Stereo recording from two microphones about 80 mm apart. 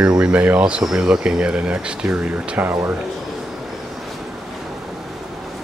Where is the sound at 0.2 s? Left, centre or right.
Centre.